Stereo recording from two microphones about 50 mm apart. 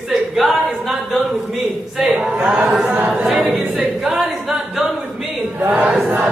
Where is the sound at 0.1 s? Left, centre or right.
Centre.